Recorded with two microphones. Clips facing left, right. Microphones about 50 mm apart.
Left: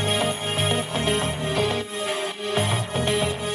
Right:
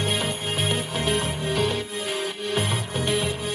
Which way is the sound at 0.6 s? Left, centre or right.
Left.